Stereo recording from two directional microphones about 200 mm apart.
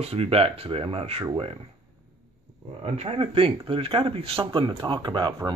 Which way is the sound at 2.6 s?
30° right (ahead or behind).